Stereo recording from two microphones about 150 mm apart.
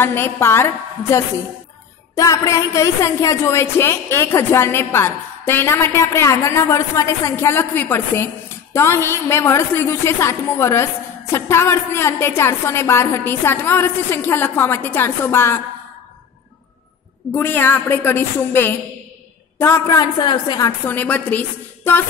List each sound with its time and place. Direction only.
0.0 s speech: 15° left (ahead or behind)
17.3 s a woman's voice: 10° left (ahead or behind); by 20.7 s 30° left (ahead or behind)
20.8 s speech: 10° left (ahead or behind)